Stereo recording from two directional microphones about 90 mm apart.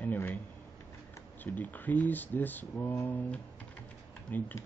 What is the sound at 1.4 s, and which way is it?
Speech, 20° left (ahead or behind).